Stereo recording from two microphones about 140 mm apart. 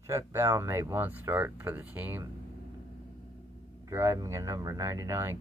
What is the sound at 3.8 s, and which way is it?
Speech, 20° right (ahead or behind).